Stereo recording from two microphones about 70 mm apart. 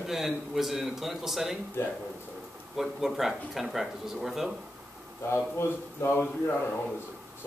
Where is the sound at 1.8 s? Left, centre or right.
Left.